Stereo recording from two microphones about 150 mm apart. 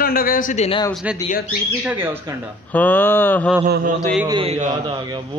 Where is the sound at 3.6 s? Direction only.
90° right.